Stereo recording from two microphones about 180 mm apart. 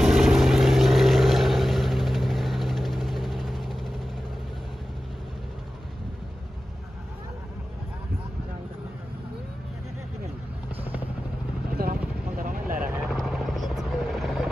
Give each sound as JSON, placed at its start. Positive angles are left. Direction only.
{"t": 0.0, "sound": "vehicle", "side_deg": 0}
{"t": 11.7, "sound": "vehicle", "side_deg": -55}
{"t": 13.1, "sound": "helicopter", "side_deg": 0}